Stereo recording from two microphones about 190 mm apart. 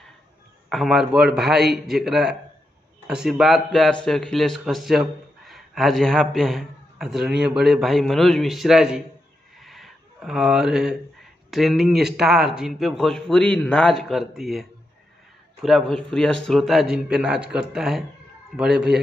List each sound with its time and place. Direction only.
0.7 s speech: centre (ahead or behind)
1.4 s a man's voice: 60° right (ahead or behind)
1.9 s speech: centre (ahead or behind)
9.6 s a sound: centre (ahead or behind)
11.5 s speech: centre (ahead or behind)